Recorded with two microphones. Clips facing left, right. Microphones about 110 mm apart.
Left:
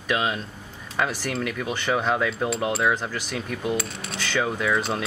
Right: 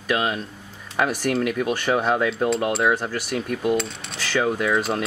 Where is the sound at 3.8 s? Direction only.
5° left (ahead or behind).